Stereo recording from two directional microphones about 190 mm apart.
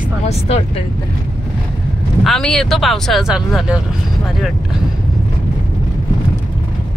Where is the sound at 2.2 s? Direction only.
Centre (ahead or behind).